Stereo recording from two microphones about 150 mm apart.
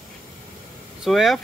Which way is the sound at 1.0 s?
Centre (ahead or behind).